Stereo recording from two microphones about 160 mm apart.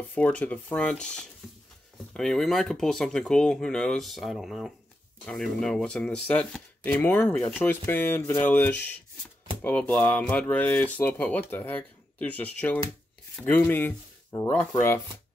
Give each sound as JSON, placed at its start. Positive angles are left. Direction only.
{"t": 0.1, "sound": "speech", "side_deg": 10}